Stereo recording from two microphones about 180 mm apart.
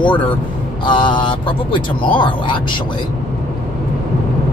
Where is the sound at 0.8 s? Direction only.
25° left (ahead or behind).